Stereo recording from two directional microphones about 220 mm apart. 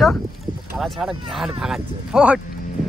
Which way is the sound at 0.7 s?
Centre (ahead or behind).